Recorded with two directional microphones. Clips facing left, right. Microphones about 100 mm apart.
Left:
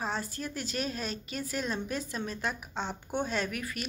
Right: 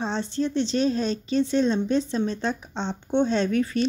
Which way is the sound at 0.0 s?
30° right (ahead or behind).